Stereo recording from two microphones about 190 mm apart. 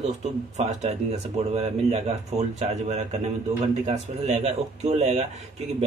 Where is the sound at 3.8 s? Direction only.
35° right (ahead or behind).